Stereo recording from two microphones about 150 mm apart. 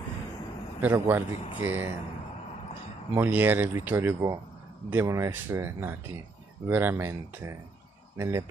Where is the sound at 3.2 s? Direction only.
10° right (ahead or behind).